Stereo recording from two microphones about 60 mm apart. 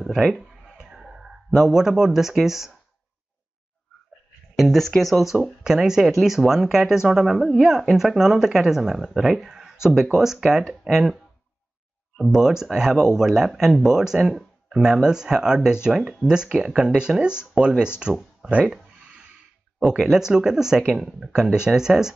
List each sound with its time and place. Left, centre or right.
0.7 s speech: centre
4.6 s speech: centre
12.2 s speech: centre
19.8 s speech: centre